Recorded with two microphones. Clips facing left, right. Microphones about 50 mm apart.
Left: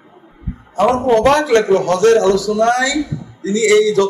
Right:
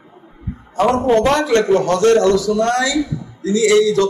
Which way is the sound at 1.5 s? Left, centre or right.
Centre.